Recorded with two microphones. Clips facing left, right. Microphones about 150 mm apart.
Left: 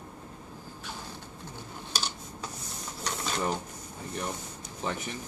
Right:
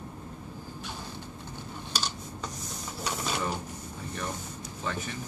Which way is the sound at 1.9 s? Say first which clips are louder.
Right 1 dB; 5° left (ahead or behind).